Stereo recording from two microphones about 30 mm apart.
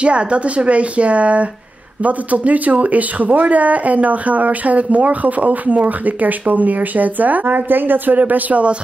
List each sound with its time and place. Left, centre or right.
0.0 s speech: right